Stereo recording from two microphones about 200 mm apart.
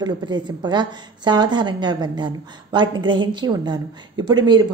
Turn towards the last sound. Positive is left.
turn(degrees=-20)  # may be behind; listen again after turning